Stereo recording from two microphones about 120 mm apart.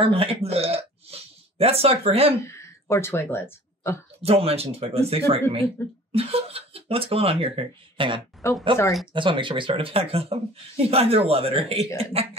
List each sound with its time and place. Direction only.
0.0 s speech: 50° right (ahead or behind)
2.4 s speech: 25° left (ahead or behind)
4.2 s speech: 55° right (ahead or behind)
5.8 s speech: 20° left (ahead or behind)
6.1 s speech: 55° right (ahead or behind)
8.4 s speech: 25° left (ahead or behind)
9.1 s speech: 45° right (ahead or behind)